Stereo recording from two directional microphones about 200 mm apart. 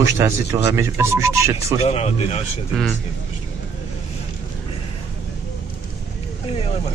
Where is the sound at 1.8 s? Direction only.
30° left (ahead or behind).